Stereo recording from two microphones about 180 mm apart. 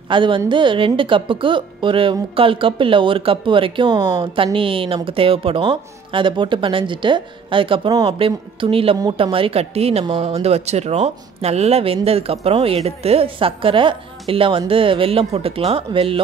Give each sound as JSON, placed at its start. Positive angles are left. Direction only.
{"t": 0.1, "sound": "a woman's voice", "side_deg": -25}